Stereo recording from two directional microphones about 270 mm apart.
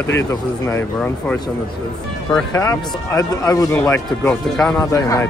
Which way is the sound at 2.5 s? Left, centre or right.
Centre.